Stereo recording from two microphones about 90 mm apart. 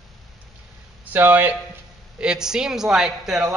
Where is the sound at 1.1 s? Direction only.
25° right (ahead or behind).